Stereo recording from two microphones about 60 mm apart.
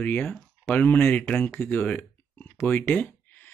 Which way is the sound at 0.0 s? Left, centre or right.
Left.